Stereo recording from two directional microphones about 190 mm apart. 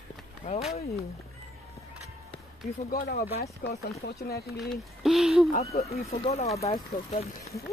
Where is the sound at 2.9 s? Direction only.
55° left (ahead or behind).